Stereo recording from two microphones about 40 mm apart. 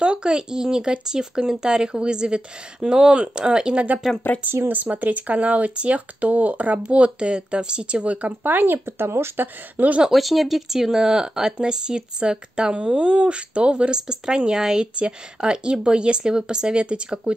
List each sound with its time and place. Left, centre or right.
0.0 s speech: right
4.9 s speech: right
8.5 s speech: right
10.0 s speech: centre; by 17.3 s right